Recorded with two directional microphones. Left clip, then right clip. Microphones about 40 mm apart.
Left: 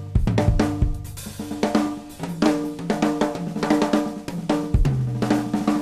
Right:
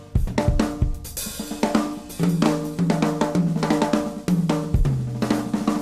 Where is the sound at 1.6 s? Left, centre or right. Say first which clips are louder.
Left 1 dB; left.